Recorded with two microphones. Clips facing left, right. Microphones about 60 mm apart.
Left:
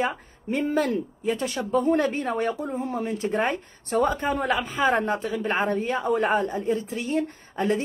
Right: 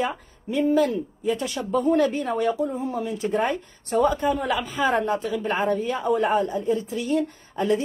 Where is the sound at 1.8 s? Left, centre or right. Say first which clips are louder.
Right 3 dB; left.